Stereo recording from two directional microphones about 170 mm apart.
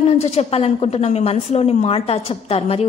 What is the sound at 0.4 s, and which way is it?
A woman's voice, 35° left (ahead or behind).